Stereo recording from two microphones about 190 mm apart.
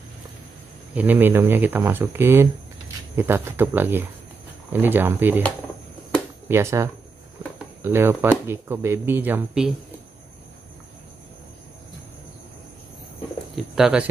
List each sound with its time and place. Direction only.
0.9 s speech: 10° right (ahead or behind)
6.5 s speech: 15° right (ahead or behind)
13.6 s bird: centre (ahead or behind)